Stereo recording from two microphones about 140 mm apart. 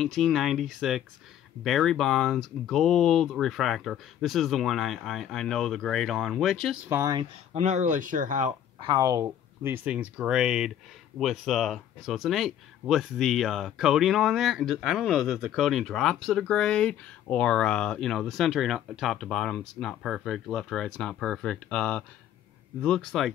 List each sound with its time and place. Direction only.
0.0 s speech: centre (ahead or behind)
6.9 s speech: 20° right (ahead or behind)
7.5 s speech: 55° right (ahead or behind)
8.8 s speech: 25° right (ahead or behind); by 23.3 s centre (ahead or behind)